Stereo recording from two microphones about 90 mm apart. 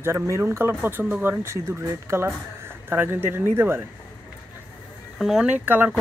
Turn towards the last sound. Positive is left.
turn(degrees=-20)  # may be behind; listen again after turning